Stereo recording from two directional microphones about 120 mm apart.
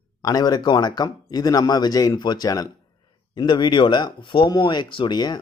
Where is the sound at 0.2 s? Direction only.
30° left (ahead or behind).